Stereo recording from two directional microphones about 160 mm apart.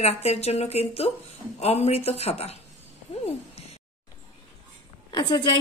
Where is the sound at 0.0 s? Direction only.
40° left (ahead or behind).